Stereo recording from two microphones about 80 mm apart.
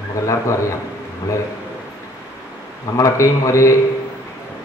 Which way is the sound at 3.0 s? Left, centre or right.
Left.